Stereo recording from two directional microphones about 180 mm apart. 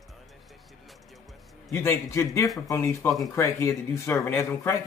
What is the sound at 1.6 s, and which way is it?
Speech, 15° left (ahead or behind).